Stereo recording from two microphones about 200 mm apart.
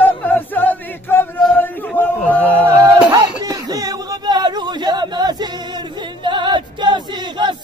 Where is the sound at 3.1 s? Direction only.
20° right (ahead or behind).